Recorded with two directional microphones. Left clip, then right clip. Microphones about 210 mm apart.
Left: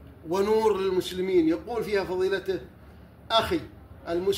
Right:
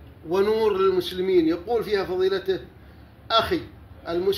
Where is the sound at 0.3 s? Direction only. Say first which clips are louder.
Right 2 dB; centre (ahead or behind).